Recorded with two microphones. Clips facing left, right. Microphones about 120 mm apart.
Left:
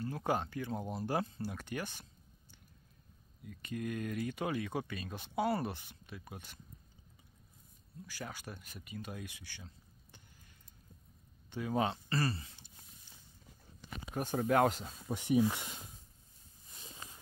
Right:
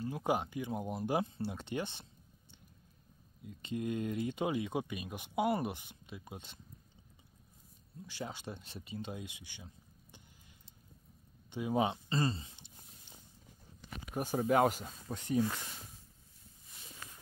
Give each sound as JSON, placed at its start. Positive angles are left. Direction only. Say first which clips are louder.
{"t": 0.0, "sound": "speech", "louder": "right 1 dB", "side_deg": -15}
{"t": 3.4, "sound": "speech", "louder": "right 2 dB", "side_deg": -20}
{"t": 8.1, "sound": "speech", "louder": "right 3 dB", "side_deg": -25}
{"t": 11.5, "sound": "speech", "louder": "right 1 dB", "side_deg": -15}
{"t": 14.1, "sound": "speech", "louder": "right 1 dB", "side_deg": -10}
{"t": 15.0, "sound": "speech", "louder": "left 3 dB", "side_deg": 15}
{"t": 16.9, "sound": "a sound", "louder": "even", "side_deg": 20}